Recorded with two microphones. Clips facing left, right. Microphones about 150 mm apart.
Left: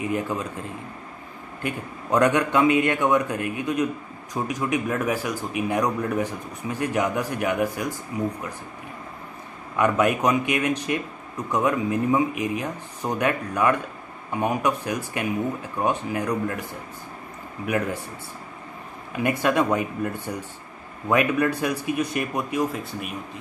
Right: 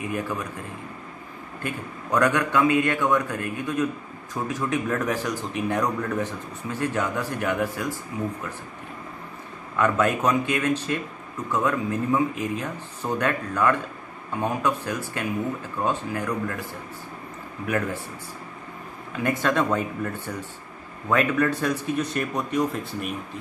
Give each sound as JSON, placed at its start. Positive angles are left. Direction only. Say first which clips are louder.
{"t": 0.0, "sound": "speech", "louder": "left 3 dB", "side_deg": 20}
{"t": 1.6, "sound": "a man's voice", "louder": "left 2 dB", "side_deg": 20}
{"t": 9.8, "sound": "a man's voice", "louder": "left 1 dB", "side_deg": 15}
{"t": 19.1, "sound": "a man's voice", "louder": "left 2 dB", "side_deg": 15}